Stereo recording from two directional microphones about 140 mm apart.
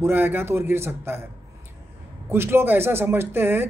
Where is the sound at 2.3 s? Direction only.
15° right (ahead or behind).